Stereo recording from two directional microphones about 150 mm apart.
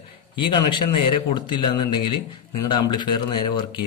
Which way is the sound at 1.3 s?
30° left (ahead or behind).